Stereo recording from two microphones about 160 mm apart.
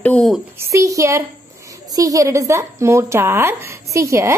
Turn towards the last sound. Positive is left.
turn(degrees=-20)  # may be behind; listen again after turning